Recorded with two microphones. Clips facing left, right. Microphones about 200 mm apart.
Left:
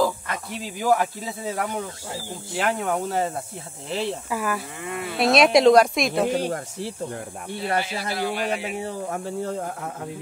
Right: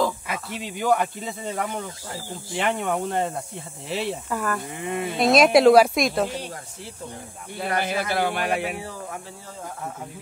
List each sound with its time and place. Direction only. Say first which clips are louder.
0.3 s speech: even; centre (ahead or behind)
4.8 s speech: right 4 dB; 20° right (ahead or behind)
5.2 s speech: right 1 dB; centre (ahead or behind)
6.3 s speech: left 9 dB; 50° left (ahead or behind)
7.8 s speech: right 3 dB; 55° right (ahead or behind)